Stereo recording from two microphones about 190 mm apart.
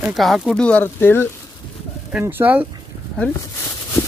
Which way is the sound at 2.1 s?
10° right (ahead or behind).